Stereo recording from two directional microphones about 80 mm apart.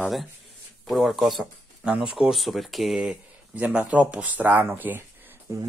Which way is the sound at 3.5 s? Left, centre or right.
Centre.